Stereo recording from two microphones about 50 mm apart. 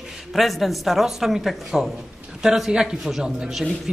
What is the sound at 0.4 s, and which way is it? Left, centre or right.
A woman's voice, centre.